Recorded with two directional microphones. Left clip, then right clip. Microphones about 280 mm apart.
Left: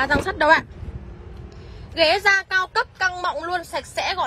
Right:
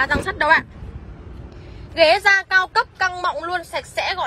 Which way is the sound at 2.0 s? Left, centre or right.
Centre.